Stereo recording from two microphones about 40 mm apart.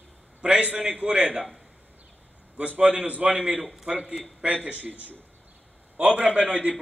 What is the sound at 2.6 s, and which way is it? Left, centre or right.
Speech, right.